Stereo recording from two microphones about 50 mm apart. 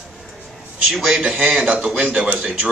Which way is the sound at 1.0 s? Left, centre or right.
Centre.